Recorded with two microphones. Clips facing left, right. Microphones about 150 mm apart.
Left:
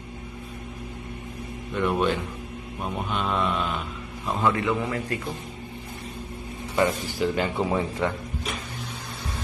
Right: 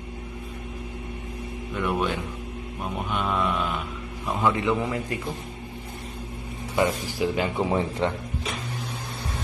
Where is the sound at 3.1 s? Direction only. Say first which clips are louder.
Even; 5° right (ahead or behind).